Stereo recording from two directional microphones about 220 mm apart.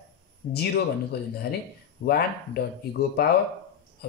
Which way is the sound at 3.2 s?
45° left (ahead or behind).